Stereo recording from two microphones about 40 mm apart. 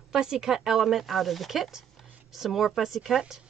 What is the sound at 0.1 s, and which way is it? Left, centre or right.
Speech, centre.